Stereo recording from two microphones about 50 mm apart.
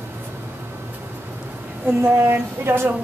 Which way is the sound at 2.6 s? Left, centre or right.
Right.